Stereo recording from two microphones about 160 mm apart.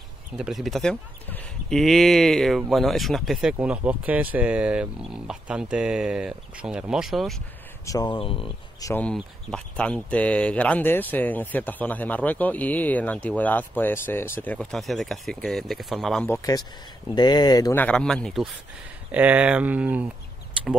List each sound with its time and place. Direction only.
0.4 s speech: centre (ahead or behind)
7.8 s speech: 25° left (ahead or behind)
8.8 s speech: 10° left (ahead or behind)
16.3 s speech: 20° left (ahead or behind)
17.7 s speech: 5° left (ahead or behind)
19.1 s speech: 10° right (ahead or behind)